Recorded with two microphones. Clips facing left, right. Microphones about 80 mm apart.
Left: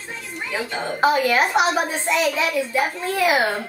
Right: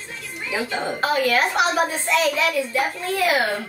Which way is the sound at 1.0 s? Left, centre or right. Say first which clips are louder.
Left 3 dB; centre.